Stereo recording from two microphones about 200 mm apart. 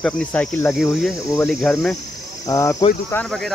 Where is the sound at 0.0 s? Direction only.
10° left (ahead or behind).